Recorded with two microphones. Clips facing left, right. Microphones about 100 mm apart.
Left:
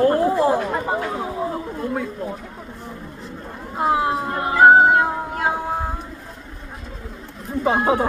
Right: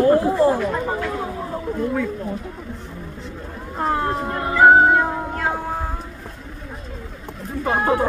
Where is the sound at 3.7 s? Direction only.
10° left (ahead or behind).